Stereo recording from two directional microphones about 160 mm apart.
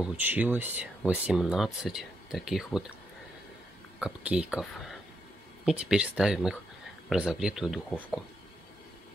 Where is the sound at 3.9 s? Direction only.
5° right (ahead or behind).